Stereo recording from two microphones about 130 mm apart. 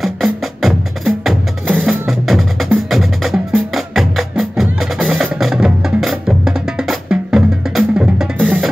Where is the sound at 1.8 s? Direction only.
Centre (ahead or behind).